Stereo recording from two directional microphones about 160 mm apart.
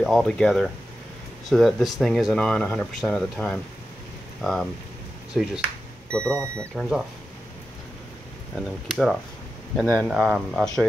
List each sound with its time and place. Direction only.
0.0 s speech: centre (ahead or behind)
6.2 s speech: 20° right (ahead or behind)
6.7 s speech: centre (ahead or behind)
8.8 s speech: centre (ahead or behind)
10.0 s speech: 5° right (ahead or behind)